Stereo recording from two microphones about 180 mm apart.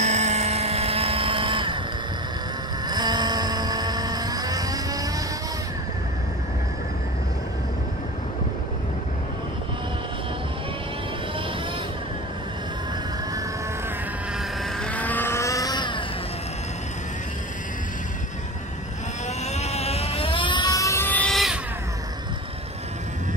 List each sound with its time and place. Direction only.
0.0 s vehicle: 40° right (ahead or behind)
2.9 s a sound: 25° right (ahead or behind)
14.8 s vehicle: 5° left (ahead or behind); by 16.0 s 25° left (ahead or behind)
19.4 s vehicle: 35° left (ahead or behind); by 21.5 s centre (ahead or behind)